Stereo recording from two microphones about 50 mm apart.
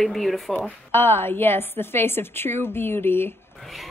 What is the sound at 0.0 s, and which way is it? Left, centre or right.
Speech, centre.